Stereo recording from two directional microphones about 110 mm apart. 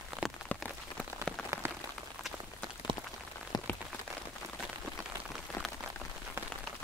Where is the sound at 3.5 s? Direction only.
40° left (ahead or behind).